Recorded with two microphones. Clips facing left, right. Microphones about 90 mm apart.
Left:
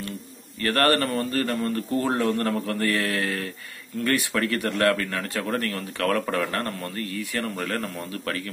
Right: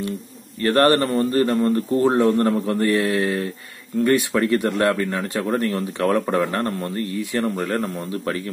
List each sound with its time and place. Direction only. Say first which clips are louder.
0.6 s a man's voice: right 5 dB; 25° right (ahead or behind)